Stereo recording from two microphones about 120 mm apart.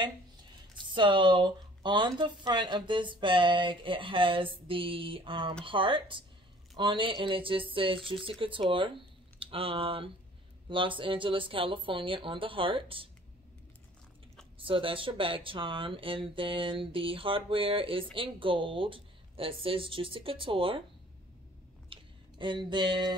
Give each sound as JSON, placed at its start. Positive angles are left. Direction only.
{"t": 0.9, "sound": "speech", "side_deg": -40}
{"t": 14.6, "sound": "speech", "side_deg": -45}
{"t": 21.8, "sound": "a sound", "side_deg": -45}